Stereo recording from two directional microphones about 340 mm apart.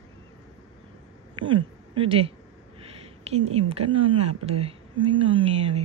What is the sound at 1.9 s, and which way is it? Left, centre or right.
Speech, centre.